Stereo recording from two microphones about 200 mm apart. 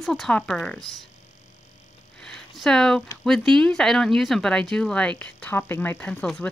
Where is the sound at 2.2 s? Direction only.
5° left (ahead or behind).